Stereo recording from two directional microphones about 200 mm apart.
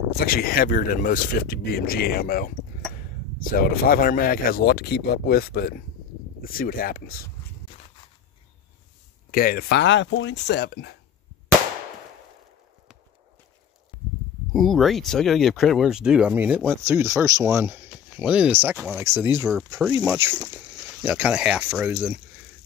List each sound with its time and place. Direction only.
0.1 s speech: 50° left (ahead or behind)
9.3 s speech: 45° left (ahead or behind); by 10.4 s 65° left (ahead or behind)
10.5 s speech: 55° left (ahead or behind)
14.5 s speech: centre (ahead or behind)